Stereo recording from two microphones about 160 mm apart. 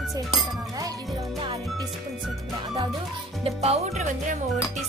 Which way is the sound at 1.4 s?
30° right (ahead or behind).